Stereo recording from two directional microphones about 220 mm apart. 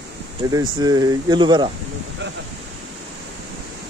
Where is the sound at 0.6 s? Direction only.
15° right (ahead or behind).